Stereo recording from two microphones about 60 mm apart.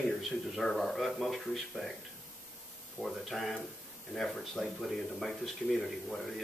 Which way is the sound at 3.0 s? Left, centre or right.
Centre.